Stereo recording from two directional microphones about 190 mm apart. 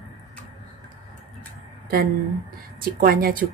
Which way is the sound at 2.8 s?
50° right (ahead or behind).